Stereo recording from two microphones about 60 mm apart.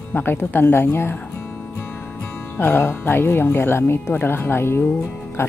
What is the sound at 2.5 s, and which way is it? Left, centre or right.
Speech, left.